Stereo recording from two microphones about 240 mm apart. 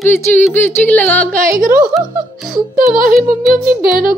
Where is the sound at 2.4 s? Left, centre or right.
Right.